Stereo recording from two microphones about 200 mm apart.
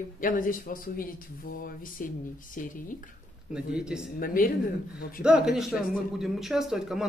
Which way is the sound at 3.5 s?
5° right (ahead or behind).